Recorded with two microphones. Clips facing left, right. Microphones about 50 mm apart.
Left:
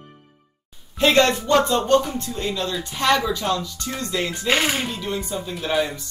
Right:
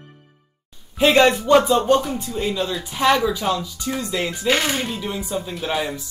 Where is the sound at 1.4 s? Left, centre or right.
Centre.